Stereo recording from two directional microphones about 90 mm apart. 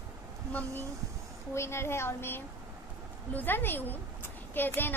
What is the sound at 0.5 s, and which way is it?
A woman's voice, 25° left (ahead or behind).